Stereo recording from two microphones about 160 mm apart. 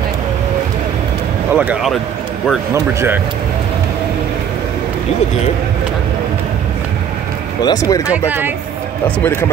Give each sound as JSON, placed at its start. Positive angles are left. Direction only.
{"t": 1.5, "sound": "speech", "side_deg": -10}
{"t": 2.7, "sound": "speech", "side_deg": -15}
{"t": 7.6, "sound": "speech", "side_deg": 20}
{"t": 8.3, "sound": "speech", "side_deg": -10}
{"t": 9.0, "sound": "speech", "side_deg": 15}